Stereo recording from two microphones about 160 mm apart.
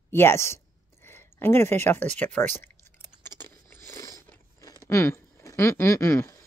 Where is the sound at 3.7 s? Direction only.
20° left (ahead or behind).